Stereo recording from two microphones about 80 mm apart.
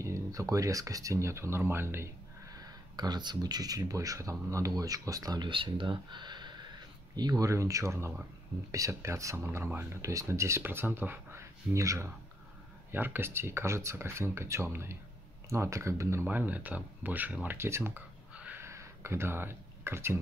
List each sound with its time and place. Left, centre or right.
0.0 s speech: right
3.0 s speech: right
5.4 s speech: right
7.2 s speech: right
12.9 s speech: right
16.3 s speech: right
17.6 s speech: right
18.3 s crow: centre
18.6 s a sound: right